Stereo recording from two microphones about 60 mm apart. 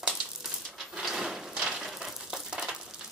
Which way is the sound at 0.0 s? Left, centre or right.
Centre.